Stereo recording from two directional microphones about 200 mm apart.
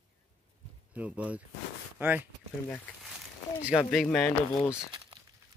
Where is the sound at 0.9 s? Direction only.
5° right (ahead or behind).